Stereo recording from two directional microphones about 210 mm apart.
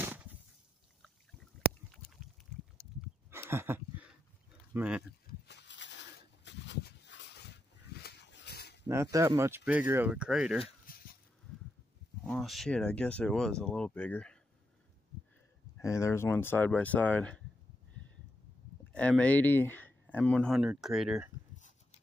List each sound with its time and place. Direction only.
0.0 s a sound: 10° right (ahead or behind)
3.0 s horse: 10° right (ahead or behind)
4.7 s speech: 5° right (ahead or behind)
5.2 s a sound: 55° left (ahead or behind)
8.8 s speech: 15° right (ahead or behind)
10.9 s dog: 45° left (ahead or behind)
12.2 s speech: centre (ahead or behind)
15.8 s speech: 15° left (ahead or behind)
18.9 s speech: 5° left (ahead or behind)
21.5 s dog: 35° left (ahead or behind)